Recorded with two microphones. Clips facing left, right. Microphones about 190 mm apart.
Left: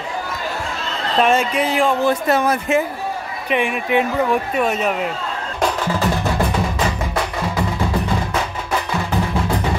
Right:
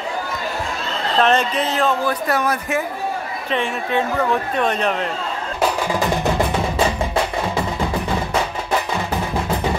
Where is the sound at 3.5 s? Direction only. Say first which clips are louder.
Left 3 dB; 15° left (ahead or behind).